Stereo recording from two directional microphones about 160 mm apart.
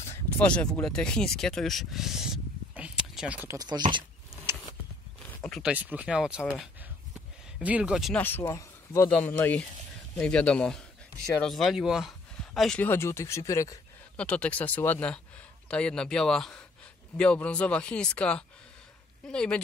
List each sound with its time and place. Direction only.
0.0 s speech: 15° left (ahead or behind); by 3.5 s 10° right (ahead or behind)
3.5 s speech: 25° right (ahead or behind)
5.6 s speech: 10° right (ahead or behind)
7.5 s speech: 10° right (ahead or behind)
8.2 s speech: 10° left (ahead or behind)
14.1 s speech: 5° left (ahead or behind)